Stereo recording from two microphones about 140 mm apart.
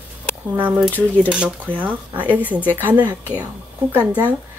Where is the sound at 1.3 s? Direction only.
10° right (ahead or behind).